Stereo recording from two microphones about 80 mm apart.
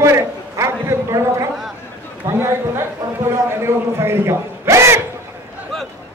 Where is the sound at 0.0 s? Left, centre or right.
Right.